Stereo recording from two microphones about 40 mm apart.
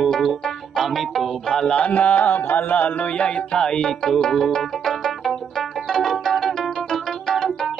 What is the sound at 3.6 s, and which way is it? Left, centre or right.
Music, centre.